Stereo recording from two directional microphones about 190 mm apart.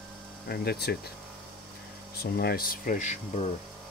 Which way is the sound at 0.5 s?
55° left (ahead or behind).